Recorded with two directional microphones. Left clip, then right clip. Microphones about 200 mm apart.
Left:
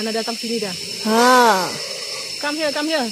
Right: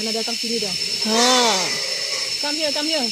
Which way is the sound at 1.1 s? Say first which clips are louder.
Left 5 dB; 10° left (ahead or behind).